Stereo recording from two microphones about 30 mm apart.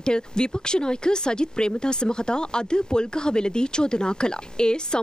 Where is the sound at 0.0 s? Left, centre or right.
Left.